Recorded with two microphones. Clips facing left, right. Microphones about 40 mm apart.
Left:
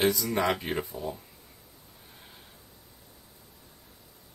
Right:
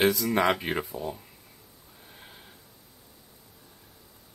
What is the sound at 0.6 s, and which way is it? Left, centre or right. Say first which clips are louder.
Speech: right 2 dB; right.